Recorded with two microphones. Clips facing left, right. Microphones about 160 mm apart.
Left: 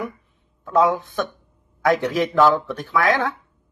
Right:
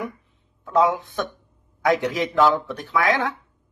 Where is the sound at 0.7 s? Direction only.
20° right (ahead or behind).